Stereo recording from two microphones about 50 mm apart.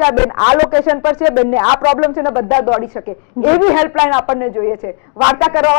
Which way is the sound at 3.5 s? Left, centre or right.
Centre.